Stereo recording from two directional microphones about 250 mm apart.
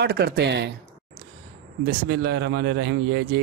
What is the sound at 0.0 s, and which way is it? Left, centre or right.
Speech, right.